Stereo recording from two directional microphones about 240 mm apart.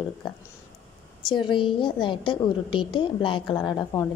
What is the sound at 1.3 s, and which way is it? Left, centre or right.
A woman's voice, centre.